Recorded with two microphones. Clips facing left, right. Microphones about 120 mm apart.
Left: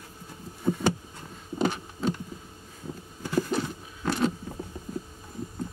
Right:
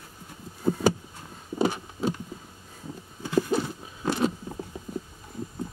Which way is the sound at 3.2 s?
15° right (ahead or behind).